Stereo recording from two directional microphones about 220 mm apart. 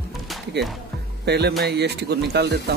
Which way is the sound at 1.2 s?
50° right (ahead or behind).